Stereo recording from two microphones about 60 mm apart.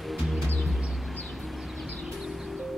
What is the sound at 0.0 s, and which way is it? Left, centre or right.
Music, centre.